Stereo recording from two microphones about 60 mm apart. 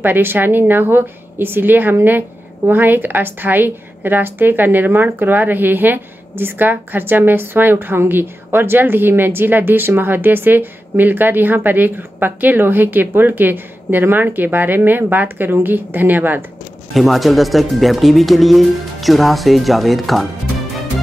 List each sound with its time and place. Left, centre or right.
0.0 s a woman's voice: right
16.9 s speech: centre